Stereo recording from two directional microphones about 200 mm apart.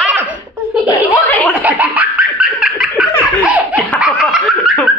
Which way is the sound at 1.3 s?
10° left (ahead or behind).